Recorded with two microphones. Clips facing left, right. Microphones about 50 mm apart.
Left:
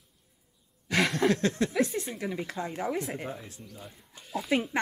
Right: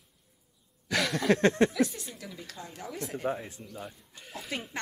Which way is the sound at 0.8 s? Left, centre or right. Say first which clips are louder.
Left 3 dB; left.